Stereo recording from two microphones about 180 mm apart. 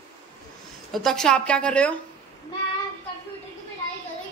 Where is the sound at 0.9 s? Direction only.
Centre (ahead or behind).